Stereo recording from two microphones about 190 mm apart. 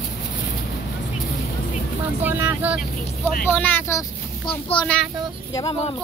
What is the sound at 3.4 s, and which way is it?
Speech, 10° left (ahead or behind).